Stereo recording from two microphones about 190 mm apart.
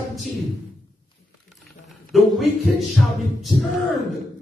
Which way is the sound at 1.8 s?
Centre (ahead or behind).